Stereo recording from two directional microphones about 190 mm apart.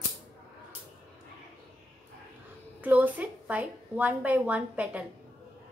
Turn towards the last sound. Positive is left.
turn(degrees=-5)  # may be behind; listen again after turning